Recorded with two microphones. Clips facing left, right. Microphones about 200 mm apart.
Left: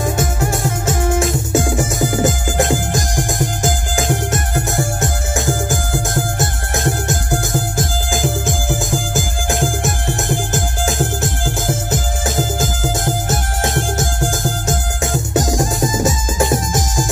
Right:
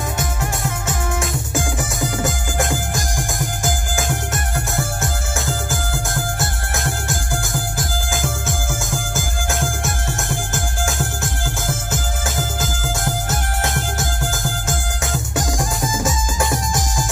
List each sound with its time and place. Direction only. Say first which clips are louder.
0.0 s music: left 6 dB; 40° left (ahead or behind); by 6.8 s 20° left (ahead or behind)
6.8 s music: left 6 dB; 40° left (ahead or behind)
7.7 s music: left 5 dB; 20° left (ahead or behind)
13.7 s music: left 5 dB; 25° left (ahead or behind)